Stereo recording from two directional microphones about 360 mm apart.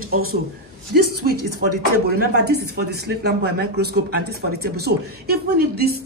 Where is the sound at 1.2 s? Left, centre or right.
Right.